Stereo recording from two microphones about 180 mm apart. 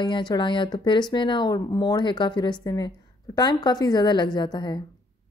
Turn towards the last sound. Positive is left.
turn(degrees=25)  # may be behind; listen again after turning